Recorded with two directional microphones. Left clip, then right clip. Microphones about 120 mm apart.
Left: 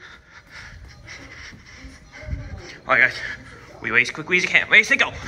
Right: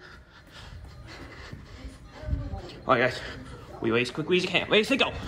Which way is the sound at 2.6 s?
25° right (ahead or behind).